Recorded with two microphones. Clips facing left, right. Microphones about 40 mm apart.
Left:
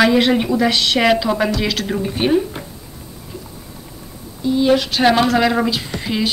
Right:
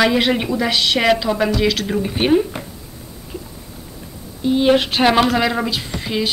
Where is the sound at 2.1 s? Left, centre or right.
Centre.